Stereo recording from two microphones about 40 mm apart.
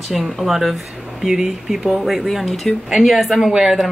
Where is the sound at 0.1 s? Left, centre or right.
Centre.